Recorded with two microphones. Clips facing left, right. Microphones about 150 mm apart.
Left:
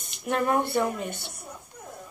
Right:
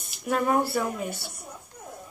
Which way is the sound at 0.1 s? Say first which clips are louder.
Right 1 dB; centre (ahead or behind).